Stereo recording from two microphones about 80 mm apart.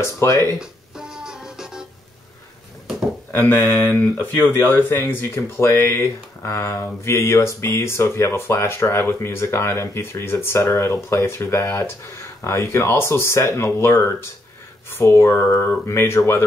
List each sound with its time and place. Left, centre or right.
0.0 s speech: left
0.6 s music: centre
3.3 s speech: left